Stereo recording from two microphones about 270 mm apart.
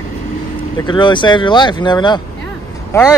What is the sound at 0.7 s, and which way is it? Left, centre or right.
Speech, centre.